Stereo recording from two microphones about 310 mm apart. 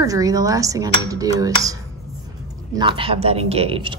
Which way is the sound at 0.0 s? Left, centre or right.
Centre.